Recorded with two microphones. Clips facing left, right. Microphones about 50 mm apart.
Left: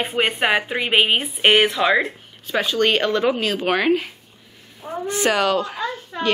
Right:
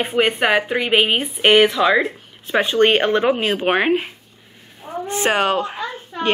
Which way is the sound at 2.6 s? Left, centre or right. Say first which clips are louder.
Right 4 dB; right.